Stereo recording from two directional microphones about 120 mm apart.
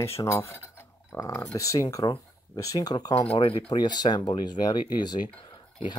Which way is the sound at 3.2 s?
50° left (ahead or behind).